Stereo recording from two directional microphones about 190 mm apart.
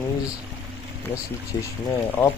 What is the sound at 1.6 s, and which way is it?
Speech, 15° left (ahead or behind).